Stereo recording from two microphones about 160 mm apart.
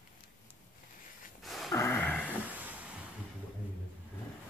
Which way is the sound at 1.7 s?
15° left (ahead or behind).